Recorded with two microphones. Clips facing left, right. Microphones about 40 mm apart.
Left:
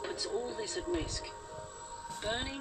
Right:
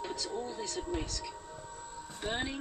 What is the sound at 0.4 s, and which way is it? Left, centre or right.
Speech, centre.